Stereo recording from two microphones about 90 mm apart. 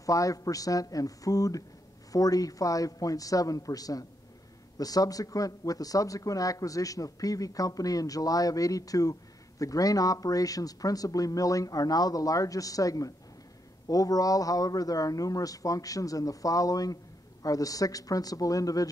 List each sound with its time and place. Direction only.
0.0 s a man's voice: 40° left (ahead or behind)